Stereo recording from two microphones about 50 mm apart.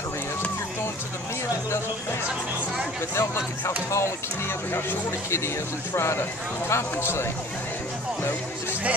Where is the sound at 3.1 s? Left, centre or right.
Left.